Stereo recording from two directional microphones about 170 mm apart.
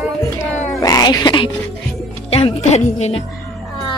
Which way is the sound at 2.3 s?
35° left (ahead or behind).